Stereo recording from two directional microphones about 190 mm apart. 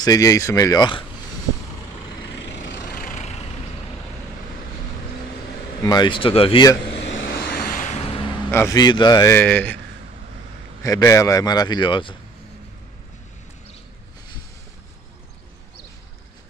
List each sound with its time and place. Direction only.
0.0 s a man's voice: 20° left (ahead or behind)
2.4 s vehicle: 70° left (ahead or behind)
2.8 s vehicle: 45° left (ahead or behind)
5.9 s speech: 25° left (ahead or behind)
7.1 s vehicle: 75° left (ahead or behind)
7.3 s vehicle: 50° left (ahead or behind); by 8.3 s 30° left (ahead or behind)
8.5 s a man's voice: 15° left (ahead or behind)
10.8 s speech: 15° left (ahead or behind)